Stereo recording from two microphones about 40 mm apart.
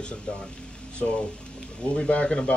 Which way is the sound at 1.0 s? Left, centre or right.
Left.